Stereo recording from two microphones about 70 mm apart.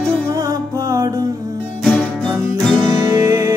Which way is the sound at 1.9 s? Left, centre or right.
Centre.